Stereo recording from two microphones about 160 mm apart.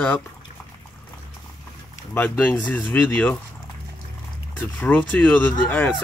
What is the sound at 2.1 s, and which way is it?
Speech, 10° left (ahead or behind).